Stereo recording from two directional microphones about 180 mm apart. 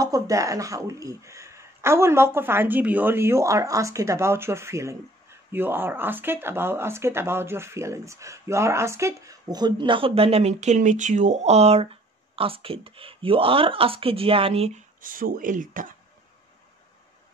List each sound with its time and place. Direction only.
0.0 s speech: 20° right (ahead or behind); by 15.9 s 45° right (ahead or behind)